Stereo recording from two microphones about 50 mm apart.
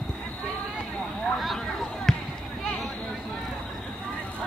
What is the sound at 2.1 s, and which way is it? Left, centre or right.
Basketball bounce, centre.